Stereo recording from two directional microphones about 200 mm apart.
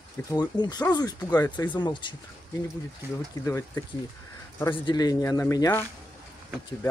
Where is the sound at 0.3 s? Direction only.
20° left (ahead or behind).